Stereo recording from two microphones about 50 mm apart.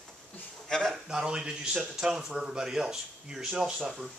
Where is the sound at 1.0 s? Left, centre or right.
Centre.